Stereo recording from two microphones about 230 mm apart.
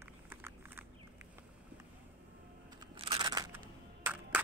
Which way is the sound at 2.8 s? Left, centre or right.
Right.